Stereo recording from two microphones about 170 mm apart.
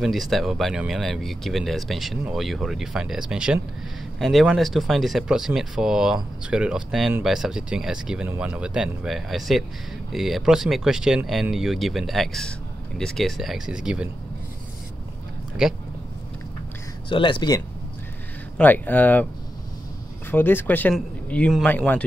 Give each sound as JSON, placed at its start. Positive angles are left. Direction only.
{"t": 0.0, "sound": "speech", "side_deg": 0}
{"t": 15.6, "sound": "speech", "side_deg": -5}
{"t": 17.1, "sound": "speech", "side_deg": 30}
{"t": 18.6, "sound": "speech", "side_deg": 10}
{"t": 20.2, "sound": "speech", "side_deg": 10}